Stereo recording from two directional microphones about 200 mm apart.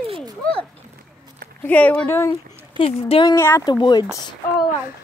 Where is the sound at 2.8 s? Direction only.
25° left (ahead or behind).